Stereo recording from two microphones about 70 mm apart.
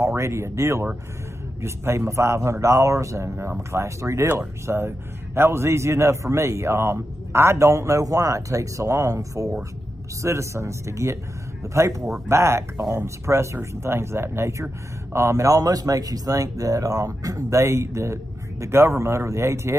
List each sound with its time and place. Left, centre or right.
0.0 s a man's voice: right